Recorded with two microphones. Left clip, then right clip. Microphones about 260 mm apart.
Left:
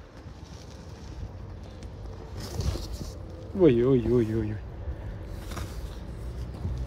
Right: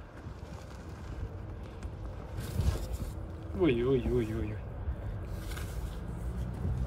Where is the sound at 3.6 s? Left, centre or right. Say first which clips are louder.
Left 7 dB; centre.